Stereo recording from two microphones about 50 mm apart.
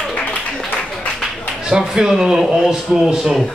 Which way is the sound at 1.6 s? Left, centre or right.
Centre.